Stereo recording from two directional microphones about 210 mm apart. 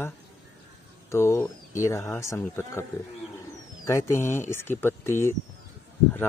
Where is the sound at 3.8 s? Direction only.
15° left (ahead or behind).